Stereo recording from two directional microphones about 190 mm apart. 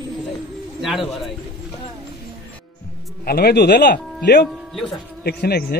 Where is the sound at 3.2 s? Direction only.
55° left (ahead or behind).